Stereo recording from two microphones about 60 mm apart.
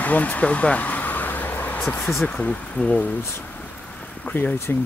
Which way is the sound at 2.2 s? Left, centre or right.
Centre.